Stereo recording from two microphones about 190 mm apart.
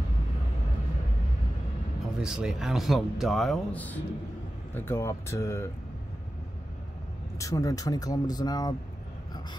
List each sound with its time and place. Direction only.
2.1 s a man's voice: 5° right (ahead or behind); by 5.7 s 15° left (ahead or behind)
7.3 s speech: 15° left (ahead or behind)